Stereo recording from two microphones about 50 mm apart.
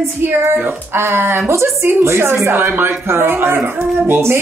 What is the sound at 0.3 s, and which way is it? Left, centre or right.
Speech, right.